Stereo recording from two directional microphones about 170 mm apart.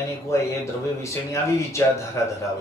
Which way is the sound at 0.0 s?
15° left (ahead or behind).